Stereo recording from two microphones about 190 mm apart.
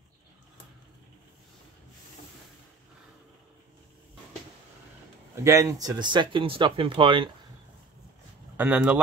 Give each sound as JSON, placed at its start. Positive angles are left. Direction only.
{"t": 5.3, "sound": "speech", "side_deg": -15}
{"t": 8.5, "sound": "speech", "side_deg": -5}